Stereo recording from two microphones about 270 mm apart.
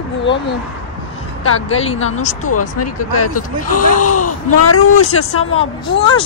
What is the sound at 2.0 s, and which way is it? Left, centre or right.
Speech, left.